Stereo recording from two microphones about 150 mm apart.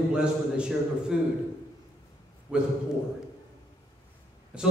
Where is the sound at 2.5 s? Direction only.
5° right (ahead or behind).